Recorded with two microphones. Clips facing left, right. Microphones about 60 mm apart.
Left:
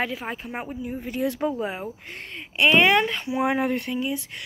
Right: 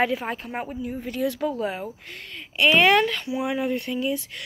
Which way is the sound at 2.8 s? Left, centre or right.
Centre.